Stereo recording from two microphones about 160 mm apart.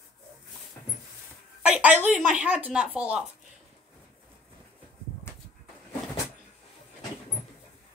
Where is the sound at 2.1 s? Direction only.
5° right (ahead or behind).